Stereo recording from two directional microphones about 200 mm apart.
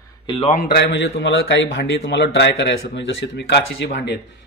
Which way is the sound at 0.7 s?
55° left (ahead or behind).